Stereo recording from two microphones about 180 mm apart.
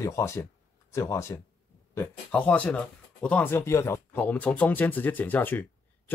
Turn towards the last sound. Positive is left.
turn(degrees=10)  # may be behind; listen again after turning